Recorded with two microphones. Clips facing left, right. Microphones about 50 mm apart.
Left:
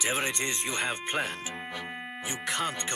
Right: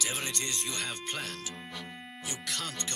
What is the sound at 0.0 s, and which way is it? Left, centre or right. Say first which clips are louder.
Speech: left 6 dB; left.